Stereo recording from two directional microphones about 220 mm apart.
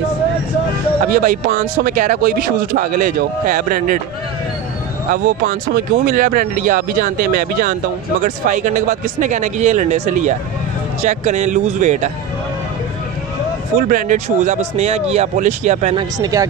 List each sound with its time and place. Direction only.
1.0 s speech: 40° right (ahead or behind)
5.1 s speech: 40° right (ahead or behind)
13.7 s speech: 40° right (ahead or behind); by 16.4 s 15° right (ahead or behind)